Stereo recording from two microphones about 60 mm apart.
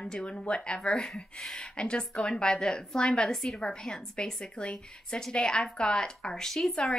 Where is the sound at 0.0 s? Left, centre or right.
Centre.